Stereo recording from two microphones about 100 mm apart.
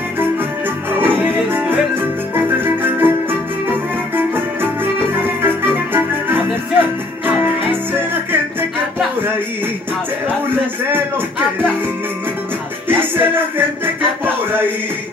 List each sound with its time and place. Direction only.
0.9 s music: 20° right (ahead or behind)
5.9 s music: 20° right (ahead or behind)
10.5 s a sound: 20° right (ahead or behind)
12.8 s music: 20° right (ahead or behind)